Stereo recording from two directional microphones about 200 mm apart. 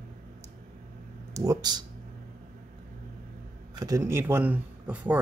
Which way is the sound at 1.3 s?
20° right (ahead or behind).